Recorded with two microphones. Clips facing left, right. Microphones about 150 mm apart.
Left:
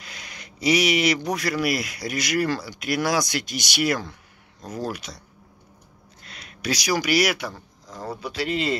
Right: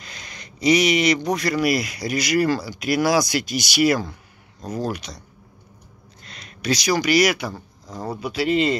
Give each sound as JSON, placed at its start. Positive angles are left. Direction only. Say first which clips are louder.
{"t": 0.0, "sound": "speech", "louder": "right 1 dB", "side_deg": 10}
{"t": 6.2, "sound": "speech", "louder": "right 4 dB", "side_deg": 5}